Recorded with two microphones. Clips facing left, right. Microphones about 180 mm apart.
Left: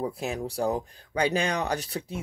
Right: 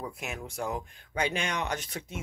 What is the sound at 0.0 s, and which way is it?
Speech, 35° left (ahead or behind).